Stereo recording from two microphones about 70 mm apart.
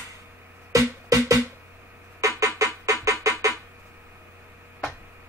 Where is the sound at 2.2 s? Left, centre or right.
Right.